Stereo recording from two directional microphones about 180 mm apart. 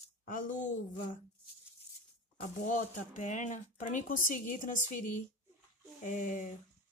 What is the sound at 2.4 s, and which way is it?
Speech, 45° left (ahead or behind).